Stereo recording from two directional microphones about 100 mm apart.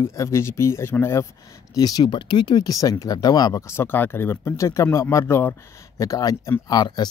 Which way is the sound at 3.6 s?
25° left (ahead or behind).